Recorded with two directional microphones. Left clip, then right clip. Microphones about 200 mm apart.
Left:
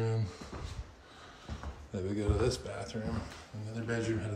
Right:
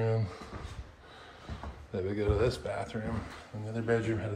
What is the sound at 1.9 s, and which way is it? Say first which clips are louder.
Speech: right 4 dB; 20° left (ahead or behind).